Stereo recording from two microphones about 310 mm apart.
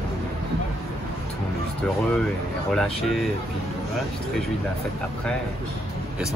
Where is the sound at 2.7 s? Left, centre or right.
Centre.